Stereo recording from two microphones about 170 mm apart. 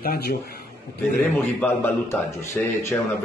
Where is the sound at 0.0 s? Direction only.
65° left (ahead or behind).